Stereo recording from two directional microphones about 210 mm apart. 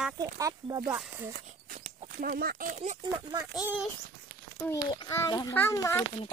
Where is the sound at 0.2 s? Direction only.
15° right (ahead or behind).